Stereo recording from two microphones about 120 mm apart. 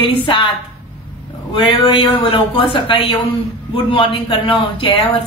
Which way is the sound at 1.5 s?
45° left (ahead or behind).